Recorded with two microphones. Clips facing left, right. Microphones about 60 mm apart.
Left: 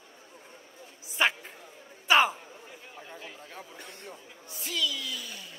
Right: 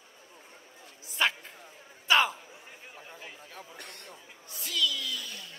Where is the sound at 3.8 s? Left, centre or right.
Right.